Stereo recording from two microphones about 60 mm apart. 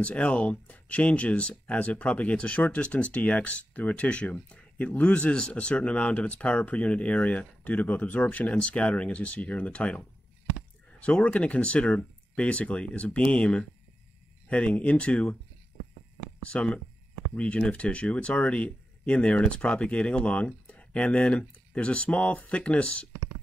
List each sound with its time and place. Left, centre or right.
0.0 s speech: left
16.4 s speech: centre